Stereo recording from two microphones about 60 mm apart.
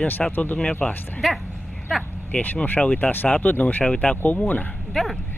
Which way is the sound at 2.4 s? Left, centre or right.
Left.